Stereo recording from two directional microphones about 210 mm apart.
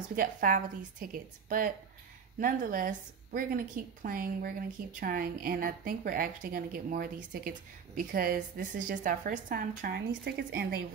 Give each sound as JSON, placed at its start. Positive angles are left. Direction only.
{"t": 0.1, "sound": "a woman's voice", "side_deg": -40}